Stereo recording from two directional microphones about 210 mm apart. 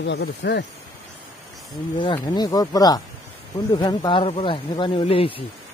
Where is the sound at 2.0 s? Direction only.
20° left (ahead or behind).